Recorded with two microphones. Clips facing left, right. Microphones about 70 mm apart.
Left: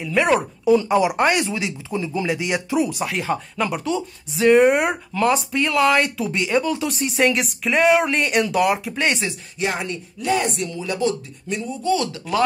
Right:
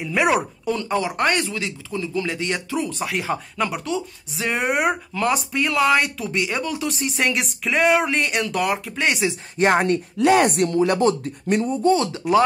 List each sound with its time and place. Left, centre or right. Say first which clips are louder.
0.0 s speech: left 1 dB; centre
0.7 s speech: left 9 dB; centre
3.0 s speech: left 1 dB; centre
9.6 s speech: right 7 dB; right
10.1 s speech: right 5 dB; right